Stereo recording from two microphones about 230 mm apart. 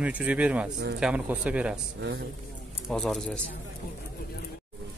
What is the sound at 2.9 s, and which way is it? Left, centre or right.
Speech, centre.